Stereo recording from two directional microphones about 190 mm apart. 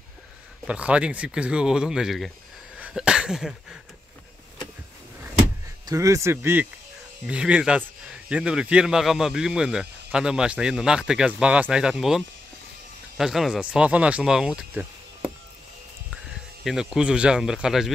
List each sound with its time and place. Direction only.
0.7 s speech: 5° right (ahead or behind)
2.8 s a sound: 5° right (ahead or behind)
5.9 s speech: 15° right (ahead or behind)
13.2 s speech: centre (ahead or behind)
16.6 s speech: 5° right (ahead or behind)